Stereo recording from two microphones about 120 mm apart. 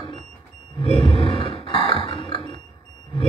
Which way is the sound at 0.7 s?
55° left (ahead or behind).